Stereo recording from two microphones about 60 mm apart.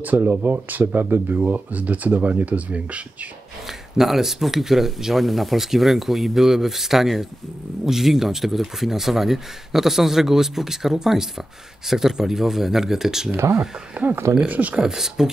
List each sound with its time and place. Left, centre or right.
0.0 s speech: right
3.6 s speech: centre
13.9 s speech: right
14.8 s speech: centre